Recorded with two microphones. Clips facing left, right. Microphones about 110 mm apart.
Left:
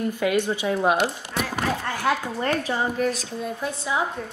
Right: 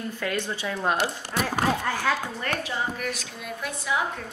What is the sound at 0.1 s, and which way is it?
Speech, 15° left (ahead or behind).